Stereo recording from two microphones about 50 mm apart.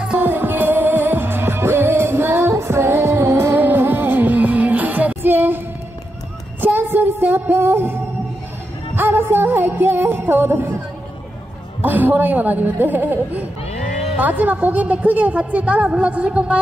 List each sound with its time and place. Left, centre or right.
0.2 s music: right
3.5 s music: right
6.6 s child singing: right
8.9 s music: right
11.8 s a woman's voice: right